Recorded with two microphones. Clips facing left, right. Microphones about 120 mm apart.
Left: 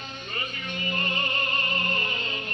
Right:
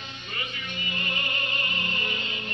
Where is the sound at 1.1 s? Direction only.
40° left (ahead or behind).